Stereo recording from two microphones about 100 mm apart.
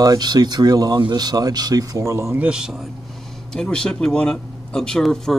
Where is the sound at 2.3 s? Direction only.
10° right (ahead or behind).